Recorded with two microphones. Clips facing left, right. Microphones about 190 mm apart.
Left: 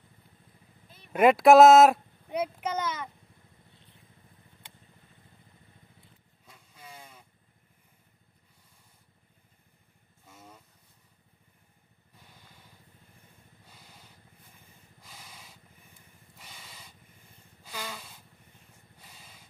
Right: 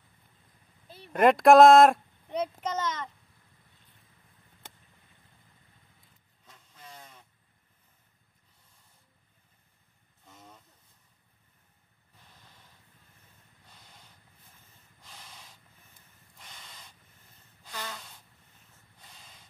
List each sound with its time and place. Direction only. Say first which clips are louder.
0.8 s a sound: right 9 dB; 35° right (ahead or behind)
1.1 s speech: left 1 dB; 5° left (ahead or behind)
4.6 s vehicle: right 5 dB; 45° right (ahead or behind)
6.4 s vehicle: left 1 dB; 10° left (ahead or behind)
10.2 s vehicle: left 1 dB; 10° left (ahead or behind)
13.7 s vehicle: left 1 dB; 5° left (ahead or behind)
14.6 s a sound: left 3 dB; 10° left (ahead or behind)
16.3 s spray: left 1 dB; 5° left (ahead or behind)
17.6 s a sound: left 1 dB; 10° left (ahead or behind)
18.9 s vehicle: left 1 dB; 10° left (ahead or behind)